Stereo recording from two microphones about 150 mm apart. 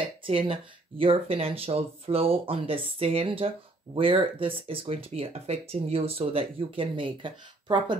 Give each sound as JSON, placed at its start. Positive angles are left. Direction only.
{"t": 0.3, "sound": "speech", "side_deg": -40}